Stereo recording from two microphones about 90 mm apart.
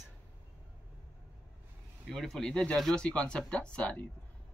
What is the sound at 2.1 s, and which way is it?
Speech, 5° left (ahead or behind).